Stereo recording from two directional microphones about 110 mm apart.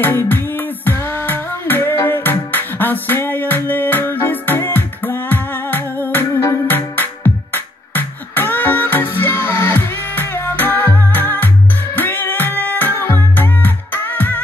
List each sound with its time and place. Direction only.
0.0 s music: 20° left (ahead or behind)